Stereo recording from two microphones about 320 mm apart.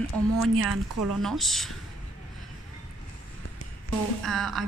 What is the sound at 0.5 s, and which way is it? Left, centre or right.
Speech, right.